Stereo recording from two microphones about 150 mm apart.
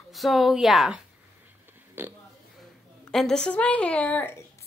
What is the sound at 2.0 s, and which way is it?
Speech, 15° right (ahead or behind).